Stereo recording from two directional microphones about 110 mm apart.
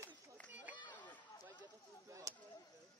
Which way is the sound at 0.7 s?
40° left (ahead or behind).